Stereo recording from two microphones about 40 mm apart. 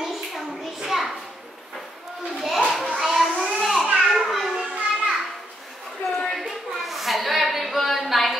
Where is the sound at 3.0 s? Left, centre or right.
Centre.